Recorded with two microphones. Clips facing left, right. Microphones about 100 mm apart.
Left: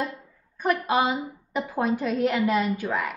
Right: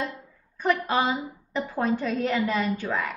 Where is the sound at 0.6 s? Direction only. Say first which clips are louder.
Left 1 dB; 10° left (ahead or behind).